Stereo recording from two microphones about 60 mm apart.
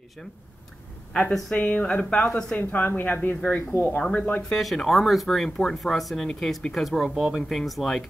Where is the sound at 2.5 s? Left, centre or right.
Left.